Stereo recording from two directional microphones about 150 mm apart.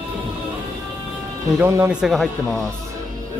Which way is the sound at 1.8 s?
Centre (ahead or behind).